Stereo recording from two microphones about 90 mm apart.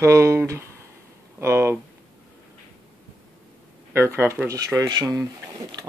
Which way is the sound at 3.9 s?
30° right (ahead or behind).